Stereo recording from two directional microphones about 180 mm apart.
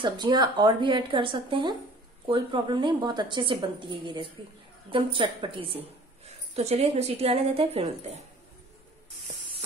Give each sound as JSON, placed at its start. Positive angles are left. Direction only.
{"t": 0.0, "sound": "a woman's voice", "side_deg": -25}